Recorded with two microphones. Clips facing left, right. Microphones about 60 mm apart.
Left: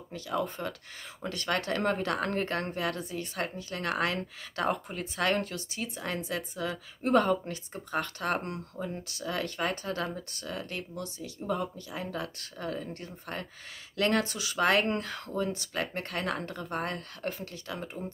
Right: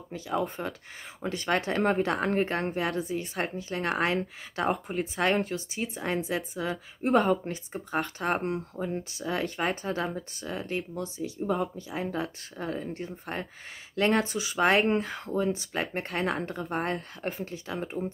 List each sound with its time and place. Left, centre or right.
0.1 s speech: centre
3.0 s speech: centre
3.3 s speech: right
14.8 s speech: centre